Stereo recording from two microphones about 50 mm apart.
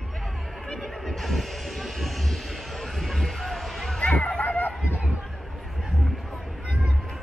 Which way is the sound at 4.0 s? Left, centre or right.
Left.